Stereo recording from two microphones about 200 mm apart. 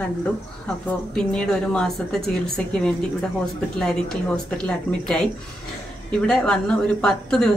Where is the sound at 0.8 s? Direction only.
5° left (ahead or behind).